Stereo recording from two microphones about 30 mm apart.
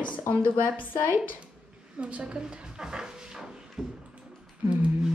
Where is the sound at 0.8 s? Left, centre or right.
Left.